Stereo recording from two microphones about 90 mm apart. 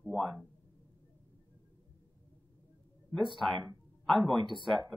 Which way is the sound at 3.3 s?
5° left (ahead or behind).